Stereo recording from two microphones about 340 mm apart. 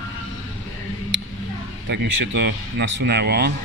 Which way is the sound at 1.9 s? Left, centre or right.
Right.